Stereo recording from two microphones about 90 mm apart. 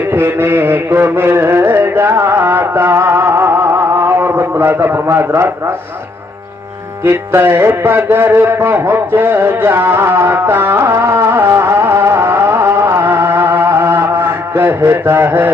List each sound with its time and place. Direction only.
0.1 s music: 25° right (ahead or behind)
7.1 s music: 25° right (ahead or behind)